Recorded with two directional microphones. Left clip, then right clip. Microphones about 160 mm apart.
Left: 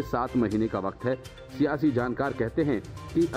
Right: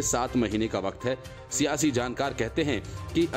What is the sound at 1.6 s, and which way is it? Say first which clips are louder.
Speech: left 1 dB; 40° right (ahead or behind).